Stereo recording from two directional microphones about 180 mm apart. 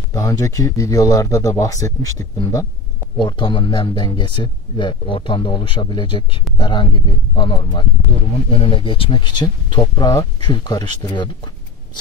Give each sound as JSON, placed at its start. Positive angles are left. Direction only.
{"t": 0.1, "sound": "speech", "side_deg": 20}